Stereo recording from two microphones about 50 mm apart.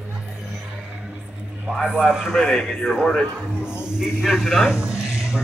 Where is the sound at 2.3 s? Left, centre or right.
Centre.